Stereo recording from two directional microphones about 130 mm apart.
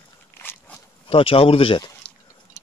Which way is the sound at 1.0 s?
45° left (ahead or behind).